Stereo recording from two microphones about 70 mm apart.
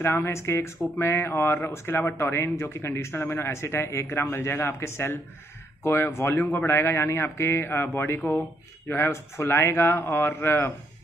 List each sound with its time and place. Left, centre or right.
0.0 s speech: left
8.2 s speech: left
8.8 s speech: left